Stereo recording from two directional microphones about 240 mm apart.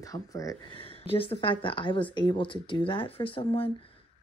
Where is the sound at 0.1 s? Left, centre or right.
Centre.